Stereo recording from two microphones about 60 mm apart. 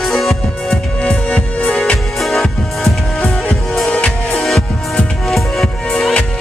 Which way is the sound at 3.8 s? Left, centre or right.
Left.